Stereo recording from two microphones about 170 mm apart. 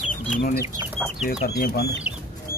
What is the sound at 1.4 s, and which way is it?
Speech, 65° left (ahead or behind).